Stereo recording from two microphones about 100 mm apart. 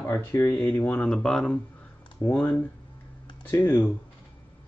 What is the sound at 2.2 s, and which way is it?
Speech, 30° left (ahead or behind).